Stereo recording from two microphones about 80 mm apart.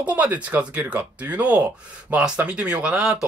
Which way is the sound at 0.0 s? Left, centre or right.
Centre.